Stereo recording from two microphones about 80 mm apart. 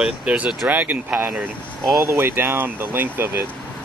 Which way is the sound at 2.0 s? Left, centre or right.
Right.